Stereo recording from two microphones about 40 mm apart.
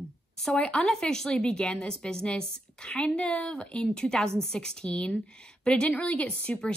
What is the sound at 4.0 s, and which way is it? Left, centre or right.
A woman's voice, centre.